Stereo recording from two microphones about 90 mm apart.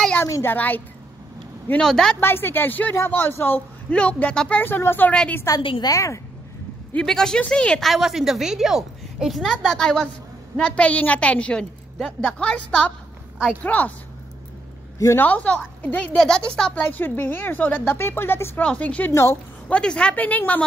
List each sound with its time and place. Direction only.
0.2 s a woman's voice: 25° left (ahead or behind)
1.8 s a woman's voice: 5° left (ahead or behind)
2.1 s a woman's voice: 25° left (ahead or behind)
5.6 s a woman's voice: 70° left (ahead or behind)
5.9 s a woman's voice: 35° left (ahead or behind)
7.1 s a woman's voice: 5° left (ahead or behind)
9.4 s a woman's voice: 10° left (ahead or behind)
15.1 s a woman's voice: 15° left (ahead or behind)
16.2 s a woman's voice: 5° left (ahead or behind)
16.7 s a woman's voice: 20° left (ahead or behind)
18.6 s a woman's voice: 15° left (ahead or behind)